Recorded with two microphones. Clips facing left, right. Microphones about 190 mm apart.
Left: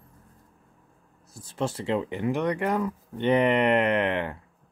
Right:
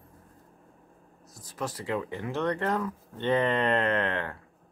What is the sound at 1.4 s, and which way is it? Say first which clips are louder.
Speech: left 5 dB; 25° left (ahead or behind).